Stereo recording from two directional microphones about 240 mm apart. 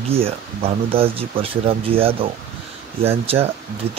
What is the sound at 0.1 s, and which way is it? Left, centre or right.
Speech, right.